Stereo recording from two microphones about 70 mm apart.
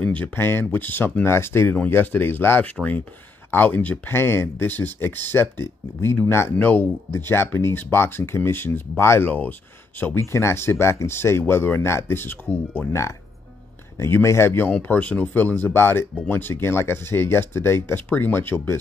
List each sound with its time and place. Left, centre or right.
0.0 s a sound: centre
0.4 s speech: left
2.6 s speech: left
9.3 s speech: left
10.1 s speech: left
13.9 s speech: left
14.7 s speech: left